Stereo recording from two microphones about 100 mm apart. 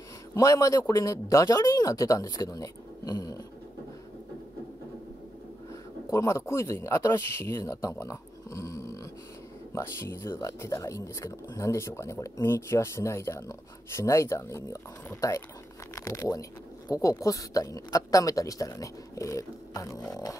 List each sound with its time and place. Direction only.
0.3 s speech: 30° left (ahead or behind)
6.1 s speech: 30° left (ahead or behind)